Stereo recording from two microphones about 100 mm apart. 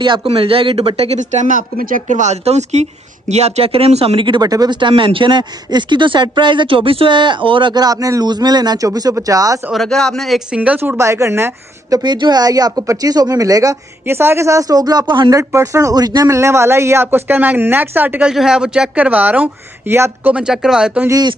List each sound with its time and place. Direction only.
0.0 s speech: 55° right (ahead or behind); by 1.2 s 85° right
2.3 s speech: 90° right; by 4.4 s 65° right (ahead or behind)
4.4 s speech: 40° right (ahead or behind)
9.7 s speech: 5° left (ahead or behind)
10.5 s speech: 15° right (ahead or behind)
11.0 s speech: 30° right (ahead or behind)
12.0 s speech: 45° right (ahead or behind)
14.0 s speech: 25° right (ahead or behind); by 15.2 s 45° right (ahead or behind)
15.2 s speech: 30° right (ahead or behind)
16.3 s speech: 30° right (ahead or behind)
18.3 s speech: 5° right (ahead or behind); by 20.3 s 20° right (ahead or behind)
20.3 s speech: 5° right (ahead or behind)